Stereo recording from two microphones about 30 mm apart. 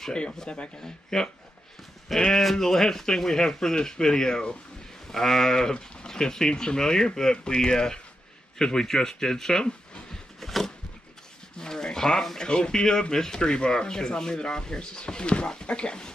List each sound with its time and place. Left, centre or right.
0.5 s a man's voice: left
1.1 s speech: centre
2.3 s speech: centre
5.0 s speech: centre; by 10.0 s left
10.4 s a sound: centre
11.6 s speech: left